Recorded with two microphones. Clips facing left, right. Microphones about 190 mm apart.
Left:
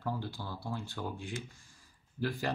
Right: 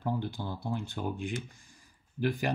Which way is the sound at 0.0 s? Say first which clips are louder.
Right 4 dB; 20° right (ahead or behind).